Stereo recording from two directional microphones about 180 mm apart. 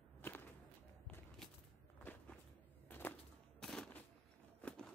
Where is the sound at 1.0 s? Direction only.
5° left (ahead or behind).